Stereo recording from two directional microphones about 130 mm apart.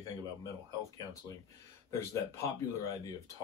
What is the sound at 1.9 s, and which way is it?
Speech, 20° left (ahead or behind).